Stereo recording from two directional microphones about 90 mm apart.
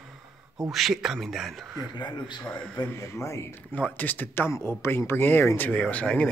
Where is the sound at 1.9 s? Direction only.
55° left (ahead or behind).